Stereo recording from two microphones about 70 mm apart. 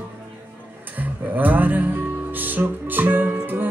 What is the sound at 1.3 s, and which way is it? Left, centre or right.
Music, right.